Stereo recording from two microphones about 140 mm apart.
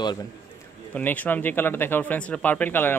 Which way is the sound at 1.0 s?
10° left (ahead or behind).